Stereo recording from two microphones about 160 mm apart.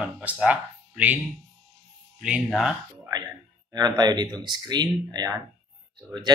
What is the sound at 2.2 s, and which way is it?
Speech, 5° right (ahead or behind).